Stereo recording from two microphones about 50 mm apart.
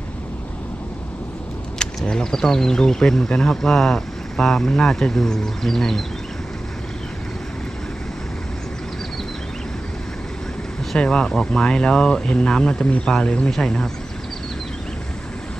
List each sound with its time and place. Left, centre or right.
2.0 s speech: centre
11.0 s speech: centre